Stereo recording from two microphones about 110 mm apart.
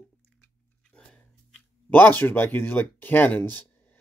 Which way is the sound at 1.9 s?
15° left (ahead or behind).